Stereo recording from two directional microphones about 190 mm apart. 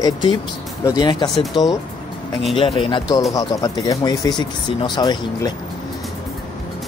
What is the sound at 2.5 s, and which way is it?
Speech, 30° left (ahead or behind).